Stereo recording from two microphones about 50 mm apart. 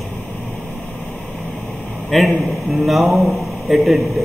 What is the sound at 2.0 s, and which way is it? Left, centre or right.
A man's voice, centre.